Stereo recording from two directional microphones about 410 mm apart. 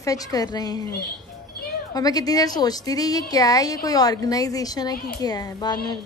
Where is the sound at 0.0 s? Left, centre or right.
Centre.